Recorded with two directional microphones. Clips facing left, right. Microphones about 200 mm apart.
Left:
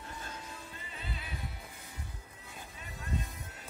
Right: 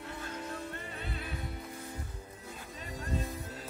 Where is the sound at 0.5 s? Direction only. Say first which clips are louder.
Right 8 dB; 60° right (ahead or behind).